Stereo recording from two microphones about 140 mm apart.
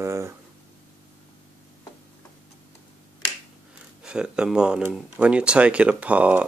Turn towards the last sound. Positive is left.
turn(degrees=-10)  # may be behind; listen again after turning